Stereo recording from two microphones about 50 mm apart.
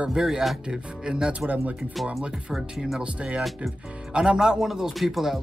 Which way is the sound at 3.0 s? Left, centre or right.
Right.